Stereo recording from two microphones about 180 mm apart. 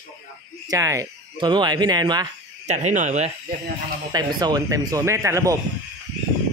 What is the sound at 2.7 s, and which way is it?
Speech, 40° right (ahead or behind).